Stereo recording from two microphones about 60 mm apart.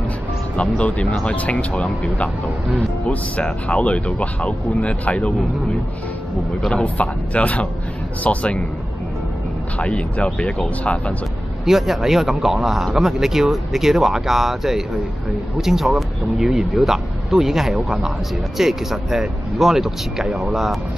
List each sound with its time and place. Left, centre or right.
0.6 s speech: left
3.6 s speech: left
6.7 s speech: centre
9.8 s speech: left
11.6 s speech: centre